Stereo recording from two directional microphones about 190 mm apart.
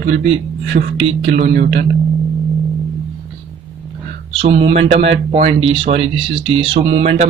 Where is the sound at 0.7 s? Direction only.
50° right (ahead or behind).